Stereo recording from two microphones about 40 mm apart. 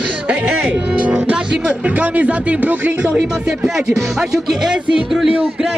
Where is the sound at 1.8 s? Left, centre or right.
Right.